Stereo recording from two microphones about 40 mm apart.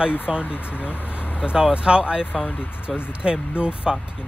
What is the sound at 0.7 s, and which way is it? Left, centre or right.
Vehicle, left.